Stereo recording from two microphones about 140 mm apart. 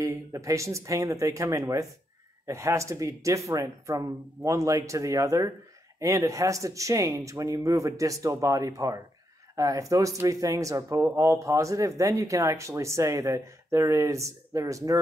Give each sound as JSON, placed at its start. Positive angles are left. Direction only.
{"t": 0.0, "sound": "speech", "side_deg": -20}